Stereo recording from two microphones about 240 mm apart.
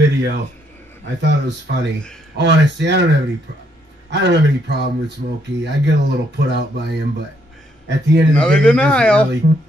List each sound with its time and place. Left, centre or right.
0.0 s speech: right
8.4 s speech: centre